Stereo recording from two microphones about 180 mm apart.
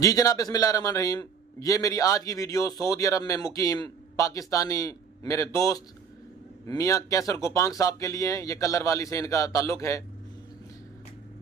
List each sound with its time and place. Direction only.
0.0 s a man's voice: 20° left (ahead or behind)